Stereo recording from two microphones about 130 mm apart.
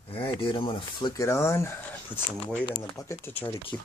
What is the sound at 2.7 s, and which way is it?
Speech, 35° left (ahead or behind).